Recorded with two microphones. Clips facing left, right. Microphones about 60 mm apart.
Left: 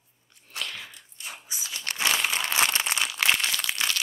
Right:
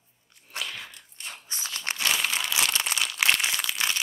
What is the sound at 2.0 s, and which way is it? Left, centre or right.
Crumpling, centre.